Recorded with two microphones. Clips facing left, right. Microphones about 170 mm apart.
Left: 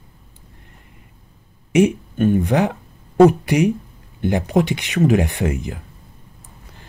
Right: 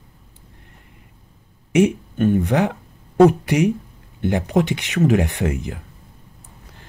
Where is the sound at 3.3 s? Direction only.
10° left (ahead or behind).